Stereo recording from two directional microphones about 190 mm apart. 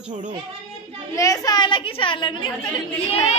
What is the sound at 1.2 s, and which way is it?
A woman's voice, 20° left (ahead or behind).